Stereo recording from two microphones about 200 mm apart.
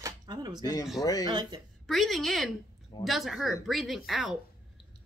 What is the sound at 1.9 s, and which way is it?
A woman's voice, centre (ahead or behind).